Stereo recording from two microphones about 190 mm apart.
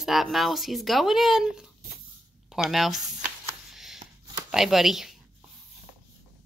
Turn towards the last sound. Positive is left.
turn(degrees=0)  # may be behind; listen again after turning